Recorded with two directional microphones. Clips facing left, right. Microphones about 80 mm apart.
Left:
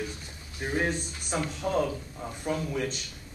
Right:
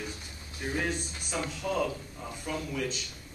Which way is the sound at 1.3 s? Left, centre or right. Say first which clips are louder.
Left 3 dB; left.